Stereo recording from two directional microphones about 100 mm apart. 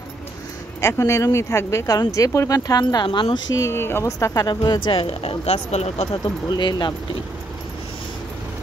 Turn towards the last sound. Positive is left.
turn(degrees=45)  # may be behind; listen again after turning